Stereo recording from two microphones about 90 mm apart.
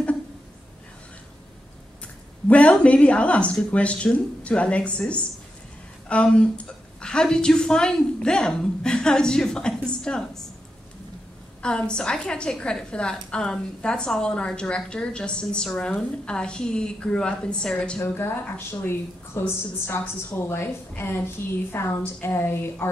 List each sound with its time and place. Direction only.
2.4 s a woman's voice: 15° left (ahead or behind)
11.6 s a woman's voice: 10° left (ahead or behind)
17.9 s speech: 30° left (ahead or behind)